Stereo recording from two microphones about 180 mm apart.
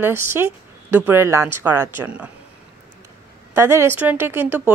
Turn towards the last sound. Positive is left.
turn(degrees=-10)  # may be behind; listen again after turning